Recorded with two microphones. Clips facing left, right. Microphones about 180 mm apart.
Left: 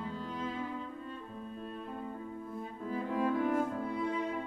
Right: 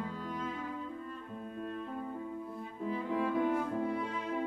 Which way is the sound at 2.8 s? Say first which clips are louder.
Left 1 dB; 45° left (ahead or behind).